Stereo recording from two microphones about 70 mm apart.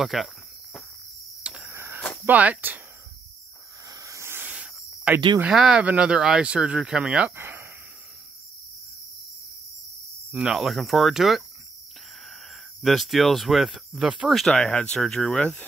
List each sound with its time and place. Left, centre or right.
0.0 s speech: centre
1.4 s wheeze: centre
1.7 s a sound: right
2.2 s speech: right
3.9 s hiss: right
5.1 s speech: centre
5.5 s speech: centre
7.3 s a sound: right
10.5 s speech: centre
12.8 s speech: centre
14.5 s speech: centre